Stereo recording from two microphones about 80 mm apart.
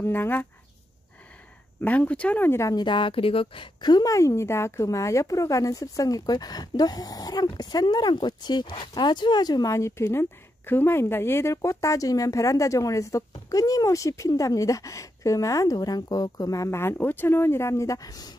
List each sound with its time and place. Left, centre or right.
0.0 s speech: left
1.8 s speech: centre
2.7 s a woman's voice: left
9.7 s a woman's voice: left